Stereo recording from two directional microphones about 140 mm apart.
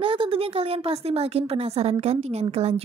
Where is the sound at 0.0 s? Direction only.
40° right (ahead or behind).